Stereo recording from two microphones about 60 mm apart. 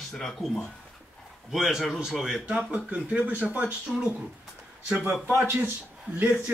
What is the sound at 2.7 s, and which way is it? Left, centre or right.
Speech, right.